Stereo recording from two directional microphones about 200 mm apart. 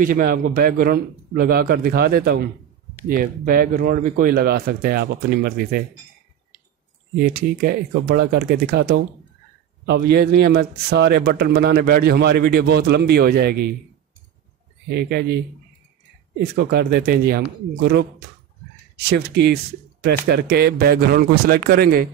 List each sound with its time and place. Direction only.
0.0 s a man's voice: 45° right (ahead or behind)
7.3 s a man's voice: 50° right (ahead or behind)
14.9 s speech: 55° right (ahead or behind)
16.3 s a man's voice: 50° right (ahead or behind)